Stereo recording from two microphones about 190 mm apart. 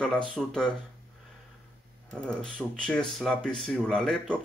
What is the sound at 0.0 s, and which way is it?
Speech, 5° left (ahead or behind).